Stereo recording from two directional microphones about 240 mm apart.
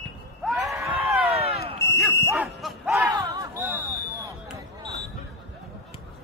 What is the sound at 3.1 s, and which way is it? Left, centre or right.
Smoke detector, centre.